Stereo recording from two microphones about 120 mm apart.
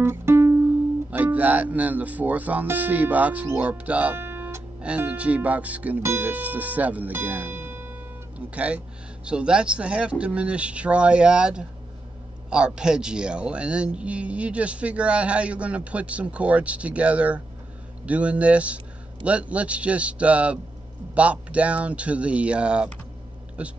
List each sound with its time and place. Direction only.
0.0 s music: 20° right (ahead or behind)
1.1 s speech: 15° right (ahead or behind)